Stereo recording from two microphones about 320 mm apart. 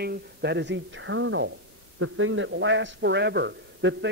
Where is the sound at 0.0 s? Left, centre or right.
Right.